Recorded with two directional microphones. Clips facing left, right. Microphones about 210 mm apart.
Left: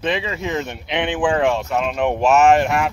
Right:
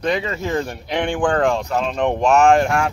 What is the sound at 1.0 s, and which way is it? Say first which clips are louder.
Speech: even; 5° left (ahead or behind).